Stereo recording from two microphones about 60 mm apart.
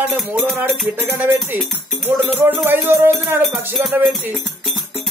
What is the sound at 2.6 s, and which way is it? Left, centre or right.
Music, right.